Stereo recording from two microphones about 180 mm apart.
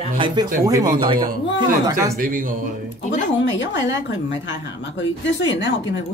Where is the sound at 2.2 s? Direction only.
50° right (ahead or behind).